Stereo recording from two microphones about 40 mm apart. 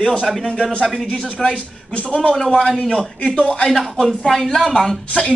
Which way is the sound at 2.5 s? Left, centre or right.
Centre.